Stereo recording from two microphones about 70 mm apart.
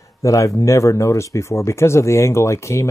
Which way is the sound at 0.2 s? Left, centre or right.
Left.